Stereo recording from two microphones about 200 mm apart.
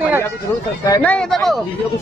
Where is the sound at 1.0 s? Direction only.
5° left (ahead or behind).